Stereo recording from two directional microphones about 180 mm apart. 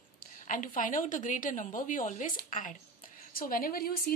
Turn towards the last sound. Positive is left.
turn(degrees=55)  # may be behind; listen again after turning